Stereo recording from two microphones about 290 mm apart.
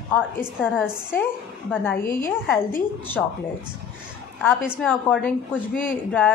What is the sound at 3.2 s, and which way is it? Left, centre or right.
Speech, centre.